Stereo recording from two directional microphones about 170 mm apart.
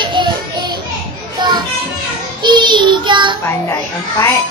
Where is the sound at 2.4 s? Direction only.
25° right (ahead or behind).